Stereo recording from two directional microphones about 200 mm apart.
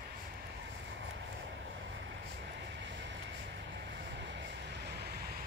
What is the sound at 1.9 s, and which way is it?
Vehicle, 60° right (ahead or behind).